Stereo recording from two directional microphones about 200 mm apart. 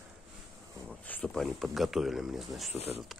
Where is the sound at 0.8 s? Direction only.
5° left (ahead or behind).